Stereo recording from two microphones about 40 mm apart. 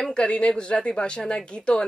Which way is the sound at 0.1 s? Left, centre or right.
Left.